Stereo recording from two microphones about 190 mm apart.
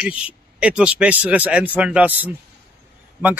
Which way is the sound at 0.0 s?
5° right (ahead or behind).